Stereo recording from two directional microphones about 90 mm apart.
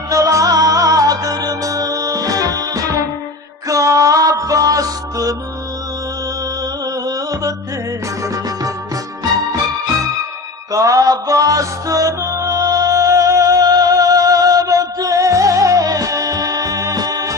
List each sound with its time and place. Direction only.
0.1 s music: 40° right (ahead or behind)
7.1 s music: 40° right (ahead or behind)
10.7 s music: 40° right (ahead or behind)